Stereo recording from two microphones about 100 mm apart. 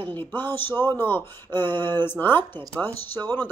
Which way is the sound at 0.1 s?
20° left (ahead or behind).